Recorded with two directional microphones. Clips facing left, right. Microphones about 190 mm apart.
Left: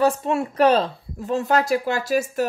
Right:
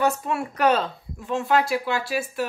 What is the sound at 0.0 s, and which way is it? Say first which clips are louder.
Speech: left 4 dB; 30° left (ahead or behind).